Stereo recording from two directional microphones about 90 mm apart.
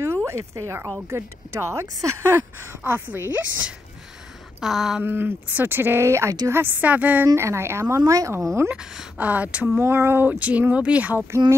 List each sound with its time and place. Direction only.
0.0 s a sound: 30° right (ahead or behind)
1.1 s speech: 30° right (ahead or behind)
4.6 s a sound: 5° right (ahead or behind)
5.0 s speech: 25° right (ahead or behind)
7.3 s speech: 30° right (ahead or behind)
9.2 s speech: 15° right (ahead or behind)
9.8 s speech: 25° right (ahead or behind)